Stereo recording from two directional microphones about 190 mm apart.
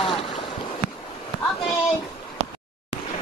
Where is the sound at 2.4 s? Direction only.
70° right (ahead or behind).